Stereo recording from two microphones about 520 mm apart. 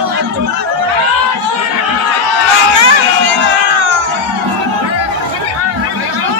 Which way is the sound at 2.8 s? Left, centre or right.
Right.